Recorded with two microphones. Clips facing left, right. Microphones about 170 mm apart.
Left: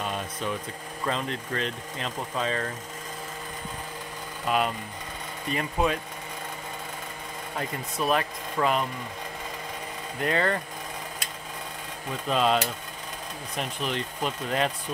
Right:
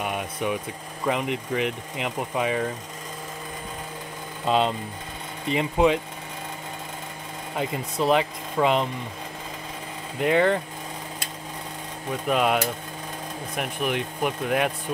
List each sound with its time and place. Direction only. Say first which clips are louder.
0.0 s mechanisms: right 4 dB; 15° right (ahead or behind)
1.0 s speech: right 5 dB; 15° right (ahead or behind)
4.5 s speech: right 4 dB; 25° right (ahead or behind)
7.5 s speech: right 5 dB; 15° right (ahead or behind)
10.1 s speech: right 6 dB; 15° right (ahead or behind)
12.3 s speech: right 2 dB; 15° right (ahead or behind)
13.6 s speech: right 4 dB; 15° right (ahead or behind)